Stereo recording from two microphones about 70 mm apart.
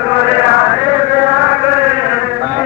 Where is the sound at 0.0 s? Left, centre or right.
Right.